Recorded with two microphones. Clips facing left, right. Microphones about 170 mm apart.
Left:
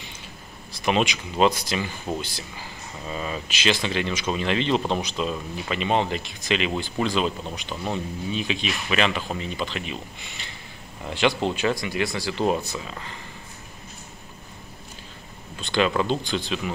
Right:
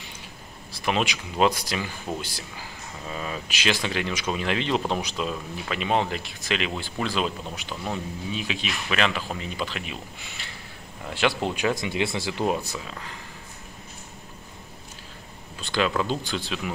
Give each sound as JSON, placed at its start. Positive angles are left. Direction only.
{"t": 0.8, "sound": "speech", "side_deg": 0}
{"t": 11.7, "sound": "speech", "side_deg": -20}
{"t": 12.4, "sound": "speech", "side_deg": -5}
{"t": 15.6, "sound": "speech", "side_deg": -5}